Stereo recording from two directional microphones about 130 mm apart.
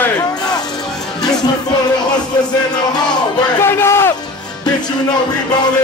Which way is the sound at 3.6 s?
20° left (ahead or behind).